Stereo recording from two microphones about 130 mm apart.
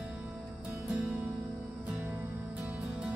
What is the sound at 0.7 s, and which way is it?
Music, 15° right (ahead or behind).